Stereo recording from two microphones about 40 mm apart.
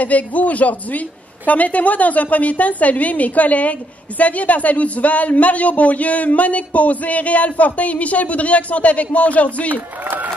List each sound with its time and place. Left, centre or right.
0.0 s speech: left